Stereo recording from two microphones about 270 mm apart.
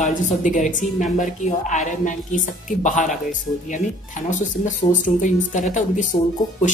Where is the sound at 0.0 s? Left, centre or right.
Left.